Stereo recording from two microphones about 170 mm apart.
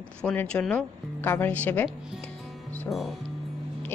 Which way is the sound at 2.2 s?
10° left (ahead or behind).